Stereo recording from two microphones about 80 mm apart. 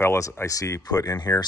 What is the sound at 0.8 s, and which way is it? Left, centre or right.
Speech, left.